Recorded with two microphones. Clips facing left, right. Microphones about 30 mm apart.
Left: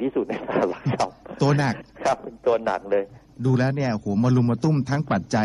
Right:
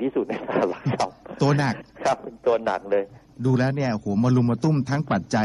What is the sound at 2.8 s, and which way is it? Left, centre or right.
A man's voice, centre.